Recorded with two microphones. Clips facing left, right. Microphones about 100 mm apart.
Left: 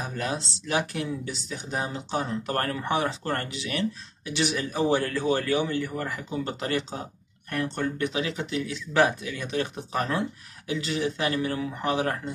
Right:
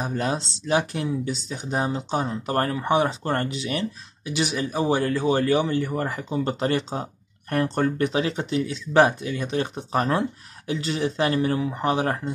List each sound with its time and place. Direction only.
0.0 s speech: 30° right (ahead or behind)